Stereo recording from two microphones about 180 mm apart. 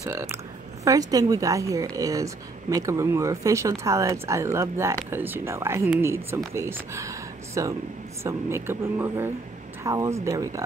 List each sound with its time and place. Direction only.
0.0 s a woman's voice: 15° right (ahead or behind)